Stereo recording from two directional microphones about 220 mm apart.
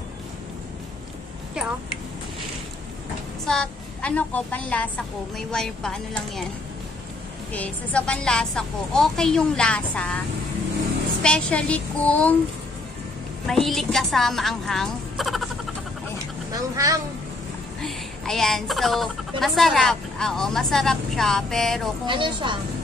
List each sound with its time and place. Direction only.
3.4 s a woman's voice: 5° left (ahead or behind)
7.5 s speech: 5° left (ahead or behind)
11.2 s speech: 5° left (ahead or behind)
13.5 s speech: centre (ahead or behind)
16.5 s speech: 15° right (ahead or behind)
17.8 s speech: centre (ahead or behind)
22.0 s speech: 20° right (ahead or behind)